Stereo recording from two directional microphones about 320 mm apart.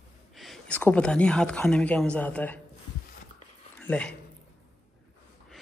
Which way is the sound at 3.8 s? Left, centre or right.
Centre.